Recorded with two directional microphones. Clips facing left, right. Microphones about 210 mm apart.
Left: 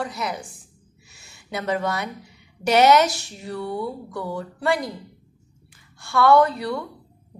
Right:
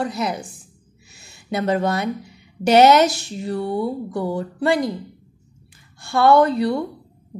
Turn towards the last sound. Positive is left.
turn(degrees=-25)  # may be behind; listen again after turning